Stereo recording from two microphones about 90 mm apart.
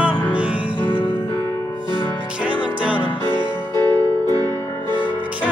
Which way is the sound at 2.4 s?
15° right (ahead or behind).